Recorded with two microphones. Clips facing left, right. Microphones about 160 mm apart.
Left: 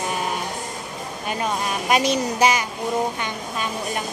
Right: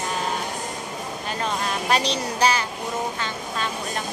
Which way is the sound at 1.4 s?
10° left (ahead or behind).